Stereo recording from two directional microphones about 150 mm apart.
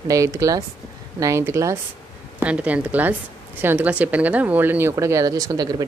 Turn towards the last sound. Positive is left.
turn(degrees=-25)  # may be behind; listen again after turning